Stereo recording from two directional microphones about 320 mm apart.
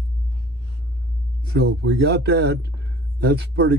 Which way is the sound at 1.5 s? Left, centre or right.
Right.